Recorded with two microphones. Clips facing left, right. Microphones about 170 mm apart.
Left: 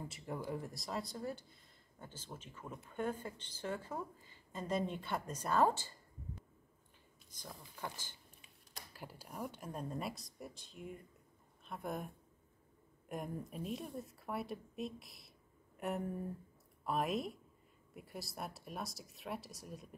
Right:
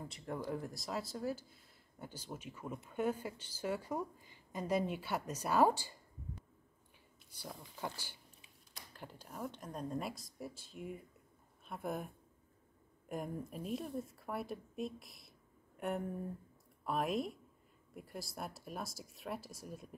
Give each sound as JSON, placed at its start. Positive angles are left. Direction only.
{"t": 0.1, "sound": "speech", "side_deg": 5}
{"t": 7.2, "sound": "speech", "side_deg": -5}
{"t": 8.9, "sound": "speech", "side_deg": 5}
{"t": 13.1, "sound": "speech", "side_deg": 0}